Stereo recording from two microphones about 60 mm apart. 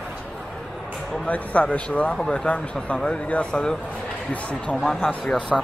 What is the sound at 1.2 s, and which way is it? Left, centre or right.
Speech, left.